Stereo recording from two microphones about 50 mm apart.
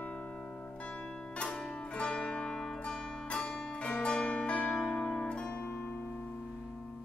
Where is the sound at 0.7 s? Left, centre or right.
Left; by 3.3 s centre.